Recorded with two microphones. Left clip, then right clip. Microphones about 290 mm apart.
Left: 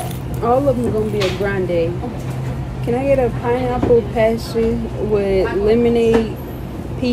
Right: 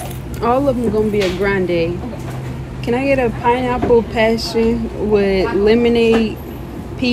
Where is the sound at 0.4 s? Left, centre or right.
Right.